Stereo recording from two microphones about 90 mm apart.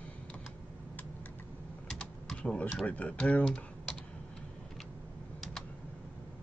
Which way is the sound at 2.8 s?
15° left (ahead or behind).